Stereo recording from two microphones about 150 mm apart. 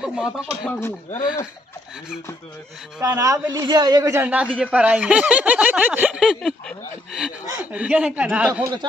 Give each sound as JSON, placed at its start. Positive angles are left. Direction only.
{"t": 0.0, "sound": "speech", "side_deg": -5}
{"t": 0.7, "sound": "speech", "side_deg": 15}
{"t": 3.0, "sound": "a man's voice", "side_deg": -20}